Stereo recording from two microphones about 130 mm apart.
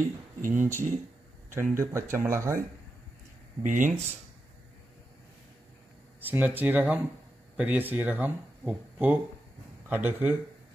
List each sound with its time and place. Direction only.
0.5 s speech: 20° right (ahead or behind)
3.6 s speech: 80° right
6.2 s speech: 15° right (ahead or behind)